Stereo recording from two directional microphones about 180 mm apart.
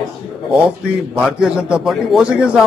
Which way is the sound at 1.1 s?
Centre (ahead or behind).